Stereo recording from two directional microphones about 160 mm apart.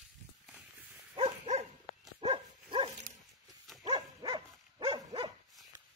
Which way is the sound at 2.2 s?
35° right (ahead or behind).